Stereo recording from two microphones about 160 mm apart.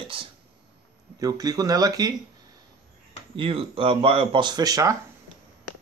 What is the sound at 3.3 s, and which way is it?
Speech, 35° right (ahead or behind).